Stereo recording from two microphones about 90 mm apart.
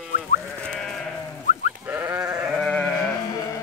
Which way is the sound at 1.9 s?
20° right (ahead or behind).